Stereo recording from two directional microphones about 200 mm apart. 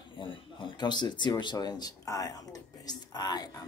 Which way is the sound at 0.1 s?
25° left (ahead or behind).